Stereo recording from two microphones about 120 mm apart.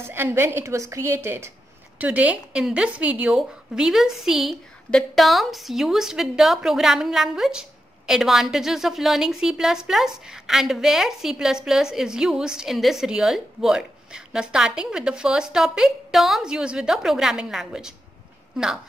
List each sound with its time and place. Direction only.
0.0 s a woman's voice: 20° right (ahead or behind); by 17.9 s 5° right (ahead or behind)